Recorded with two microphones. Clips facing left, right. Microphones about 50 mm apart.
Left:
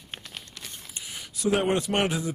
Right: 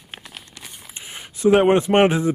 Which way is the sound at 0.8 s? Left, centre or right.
Right.